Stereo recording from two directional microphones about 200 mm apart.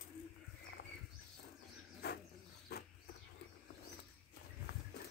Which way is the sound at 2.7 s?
50° left (ahead or behind).